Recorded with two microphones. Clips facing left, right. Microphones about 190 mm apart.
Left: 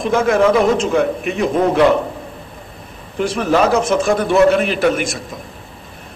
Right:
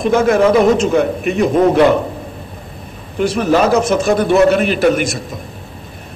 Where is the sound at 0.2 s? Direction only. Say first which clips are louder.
Right 1 dB; 40° right (ahead or behind).